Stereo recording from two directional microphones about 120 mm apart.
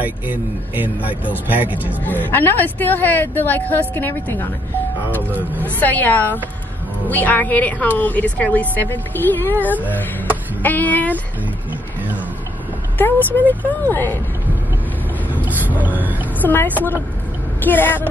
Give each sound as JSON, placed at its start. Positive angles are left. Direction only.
{"t": 0.0, "sound": "speech", "side_deg": -15}
{"t": 2.0, "sound": "a woman's voice", "side_deg": 15}
{"t": 5.6, "sound": "a woman's voice", "side_deg": 15}
{"t": 10.6, "sound": "a sound", "side_deg": 15}
{"t": 12.9, "sound": "a woman's voice", "side_deg": 15}
{"t": 15.3, "sound": "a sound", "side_deg": -15}
{"t": 16.3, "sound": "a woman's voice", "side_deg": 15}